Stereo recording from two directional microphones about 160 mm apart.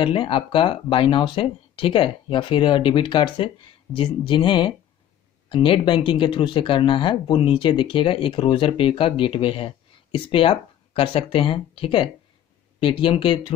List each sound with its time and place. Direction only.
0.0 s speech: 35° left (ahead or behind)